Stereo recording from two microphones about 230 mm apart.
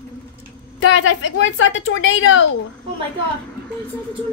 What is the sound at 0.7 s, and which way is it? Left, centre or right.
A woman's voice, left.